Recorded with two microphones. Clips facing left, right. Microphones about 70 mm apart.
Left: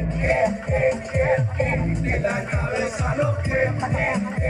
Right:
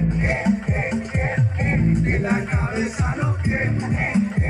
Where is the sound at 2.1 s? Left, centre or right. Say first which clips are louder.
Right 1 dB; right.